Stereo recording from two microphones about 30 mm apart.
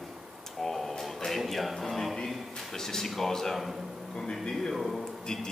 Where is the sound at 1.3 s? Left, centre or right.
Centre.